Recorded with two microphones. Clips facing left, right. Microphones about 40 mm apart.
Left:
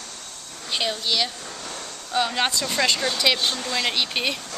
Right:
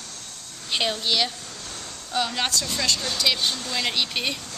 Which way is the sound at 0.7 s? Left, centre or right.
Centre.